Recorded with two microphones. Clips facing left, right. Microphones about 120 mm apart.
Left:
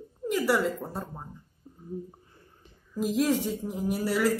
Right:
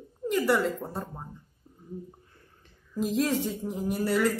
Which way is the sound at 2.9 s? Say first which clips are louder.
Left 1 dB; 5° left (ahead or behind).